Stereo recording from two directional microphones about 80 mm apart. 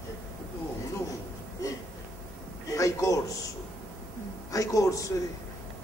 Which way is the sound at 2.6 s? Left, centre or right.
Left.